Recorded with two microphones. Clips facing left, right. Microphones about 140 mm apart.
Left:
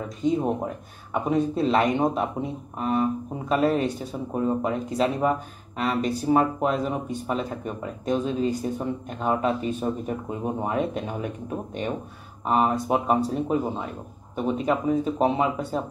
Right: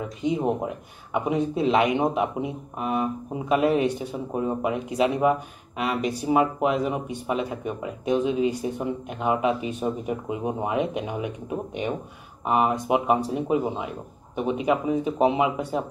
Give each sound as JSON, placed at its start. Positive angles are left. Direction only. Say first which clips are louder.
{"t": 1.1, "sound": "speech", "louder": "left 1 dB", "side_deg": -15}